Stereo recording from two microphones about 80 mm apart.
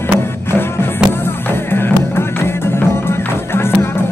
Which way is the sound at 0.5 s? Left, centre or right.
Left.